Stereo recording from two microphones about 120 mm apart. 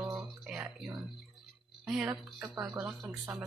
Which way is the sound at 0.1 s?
5° right (ahead or behind).